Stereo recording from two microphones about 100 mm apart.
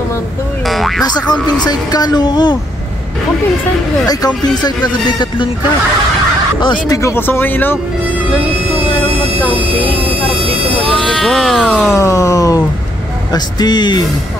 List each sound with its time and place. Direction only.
0.7 s boing: centre (ahead or behind)
1.0 s speech: 45° left (ahead or behind)
6.9 s speech: 30° left (ahead or behind)
10.8 s music: centre (ahead or behind)
11.9 s a sound: 30° left (ahead or behind)
13.3 s speech: 45° left (ahead or behind)